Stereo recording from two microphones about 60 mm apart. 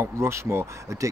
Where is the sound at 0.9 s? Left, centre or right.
Right.